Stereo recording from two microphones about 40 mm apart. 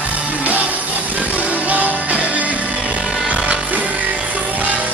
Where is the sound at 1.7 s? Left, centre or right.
Right.